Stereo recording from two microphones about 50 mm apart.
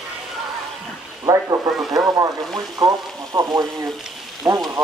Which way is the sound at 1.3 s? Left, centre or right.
Right.